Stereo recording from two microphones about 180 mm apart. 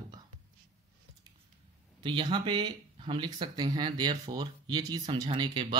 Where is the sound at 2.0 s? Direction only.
25° right (ahead or behind).